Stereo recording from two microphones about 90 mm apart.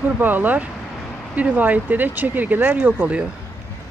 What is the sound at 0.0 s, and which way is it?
Speech, 20° right (ahead or behind).